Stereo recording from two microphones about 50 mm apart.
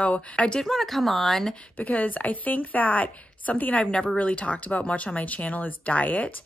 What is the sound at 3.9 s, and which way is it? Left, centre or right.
Speech, centre.